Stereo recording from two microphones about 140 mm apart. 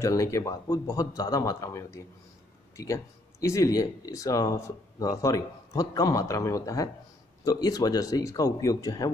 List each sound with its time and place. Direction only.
0.0 s speech: 20° left (ahead or behind)